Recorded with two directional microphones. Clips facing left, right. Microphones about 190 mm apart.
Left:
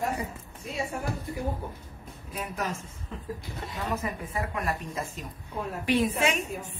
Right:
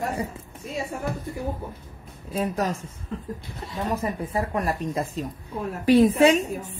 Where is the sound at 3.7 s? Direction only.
35° right (ahead or behind).